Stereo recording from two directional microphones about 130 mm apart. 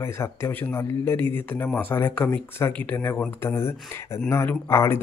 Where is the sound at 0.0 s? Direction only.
20° left (ahead or behind).